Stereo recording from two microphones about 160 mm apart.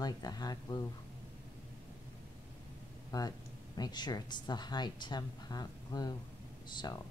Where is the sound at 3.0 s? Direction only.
25° left (ahead or behind).